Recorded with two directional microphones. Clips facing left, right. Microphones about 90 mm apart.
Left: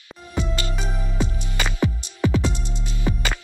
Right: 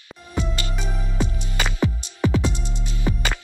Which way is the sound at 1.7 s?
20° right (ahead or behind).